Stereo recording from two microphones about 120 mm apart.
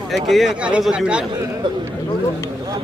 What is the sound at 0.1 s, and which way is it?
Speech, centre (ahead or behind).